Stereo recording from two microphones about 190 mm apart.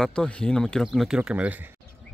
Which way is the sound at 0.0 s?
5° left (ahead or behind).